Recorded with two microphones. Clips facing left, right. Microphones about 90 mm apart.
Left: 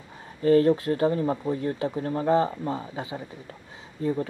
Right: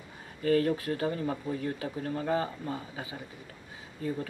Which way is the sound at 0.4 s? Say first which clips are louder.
Left 7 dB; 35° left (ahead or behind).